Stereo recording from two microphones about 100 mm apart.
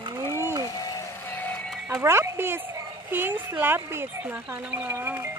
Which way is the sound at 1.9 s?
25° right (ahead or behind).